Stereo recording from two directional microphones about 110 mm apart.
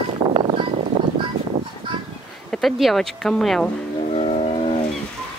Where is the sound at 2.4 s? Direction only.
5° left (ahead or behind).